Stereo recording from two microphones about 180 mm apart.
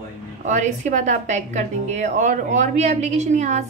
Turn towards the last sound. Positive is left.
turn(degrees=-40)  # may be behind; listen again after turning